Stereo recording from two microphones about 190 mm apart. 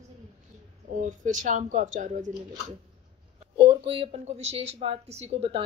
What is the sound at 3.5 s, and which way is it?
Speech, 25° right (ahead or behind).